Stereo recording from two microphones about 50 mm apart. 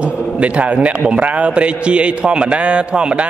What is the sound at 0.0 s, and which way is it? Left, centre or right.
A man's voice, right.